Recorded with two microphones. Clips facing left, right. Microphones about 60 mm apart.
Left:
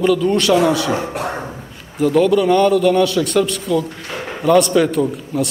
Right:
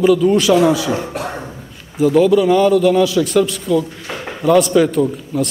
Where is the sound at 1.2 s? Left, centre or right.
Centre.